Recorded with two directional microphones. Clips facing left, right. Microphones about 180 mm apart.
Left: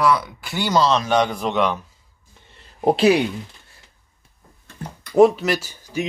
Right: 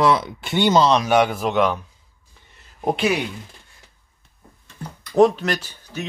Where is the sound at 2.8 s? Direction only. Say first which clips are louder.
Left 4 dB; 35° left (ahead or behind).